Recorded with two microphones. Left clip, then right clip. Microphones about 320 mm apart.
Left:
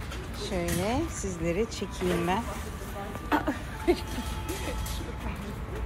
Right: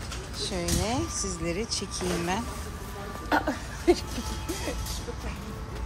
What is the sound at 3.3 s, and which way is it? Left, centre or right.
Music, right.